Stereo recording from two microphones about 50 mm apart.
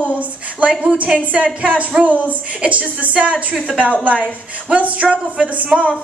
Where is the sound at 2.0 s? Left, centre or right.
Right.